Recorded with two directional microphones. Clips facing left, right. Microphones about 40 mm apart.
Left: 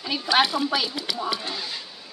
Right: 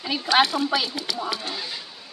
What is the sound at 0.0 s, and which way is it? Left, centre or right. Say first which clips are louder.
Speech: right 1 dB; centre.